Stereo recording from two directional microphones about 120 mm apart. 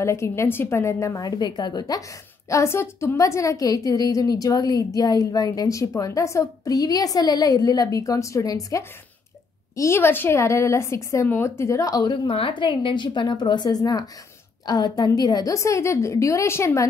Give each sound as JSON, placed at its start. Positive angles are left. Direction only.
{"t": 0.0, "sound": "a woman's voice", "side_deg": 25}
{"t": 2.5, "sound": "a woman's voice", "side_deg": 20}
{"t": 12.3, "sound": "a woman's voice", "side_deg": 45}